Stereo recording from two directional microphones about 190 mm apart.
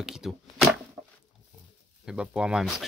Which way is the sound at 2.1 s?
5° right (ahead or behind).